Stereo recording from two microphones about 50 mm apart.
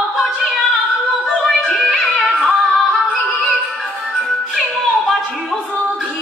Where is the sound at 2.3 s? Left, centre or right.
Centre.